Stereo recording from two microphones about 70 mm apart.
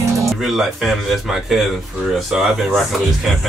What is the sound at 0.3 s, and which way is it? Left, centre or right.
A man's voice, centre.